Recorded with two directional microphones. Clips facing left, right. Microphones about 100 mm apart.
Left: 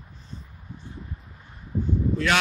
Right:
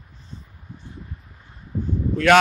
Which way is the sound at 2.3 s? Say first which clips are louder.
Right 10 dB; 55° right (ahead or behind).